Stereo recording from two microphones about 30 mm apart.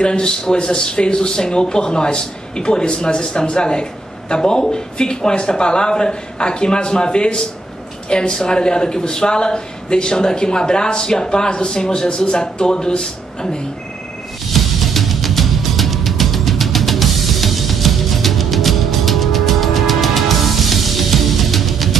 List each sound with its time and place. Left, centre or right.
0.0 s speech: left
14.5 s music: centre